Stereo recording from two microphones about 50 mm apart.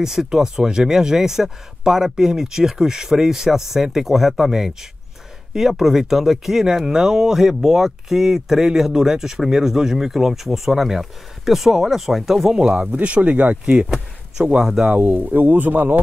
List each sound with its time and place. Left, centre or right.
0.0 s speech: centre
12.5 s speech: centre
15.0 s speech: right